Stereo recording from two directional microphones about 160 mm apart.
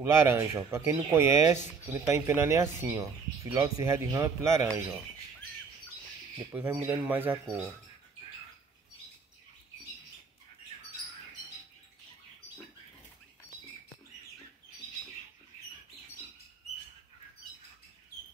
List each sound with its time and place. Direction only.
0.0 s speech: 15° right (ahead or behind)
6.5 s speech: 10° right (ahead or behind)